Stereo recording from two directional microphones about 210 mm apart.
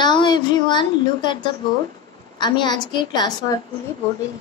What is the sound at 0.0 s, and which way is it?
A woman's voice, 20° left (ahead or behind).